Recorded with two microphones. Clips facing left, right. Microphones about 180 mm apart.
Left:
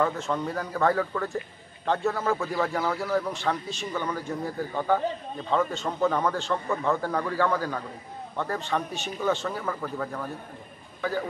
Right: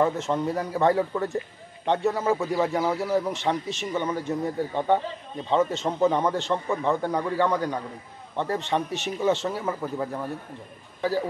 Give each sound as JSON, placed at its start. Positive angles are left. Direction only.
{"t": 0.0, "sound": "a man's voice", "side_deg": -20}
{"t": 11.0, "sound": "a man's voice", "side_deg": -30}